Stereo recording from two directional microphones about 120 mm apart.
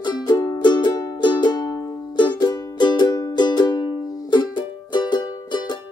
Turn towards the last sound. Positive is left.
turn(degrees=40)  # may be behind; listen again after turning